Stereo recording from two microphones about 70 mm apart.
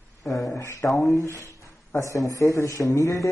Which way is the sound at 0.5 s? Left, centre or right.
Left.